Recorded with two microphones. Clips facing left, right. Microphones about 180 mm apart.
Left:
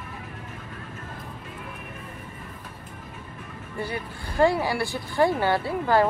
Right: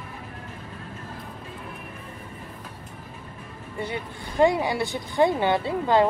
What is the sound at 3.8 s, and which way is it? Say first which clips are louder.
Speech: right 1 dB; 20° right (ahead or behind).